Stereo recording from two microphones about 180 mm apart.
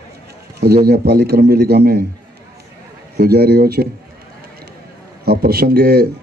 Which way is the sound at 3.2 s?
60° right (ahead or behind).